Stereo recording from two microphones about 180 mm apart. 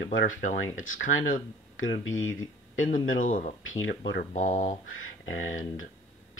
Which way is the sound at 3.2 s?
50° left (ahead or behind).